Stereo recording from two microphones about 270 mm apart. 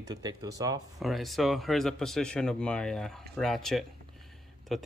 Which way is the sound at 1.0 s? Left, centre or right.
Centre.